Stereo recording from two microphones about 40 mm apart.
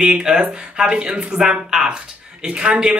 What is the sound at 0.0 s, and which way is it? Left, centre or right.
Speech, right.